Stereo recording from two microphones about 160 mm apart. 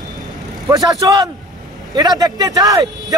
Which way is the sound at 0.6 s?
20° right (ahead or behind).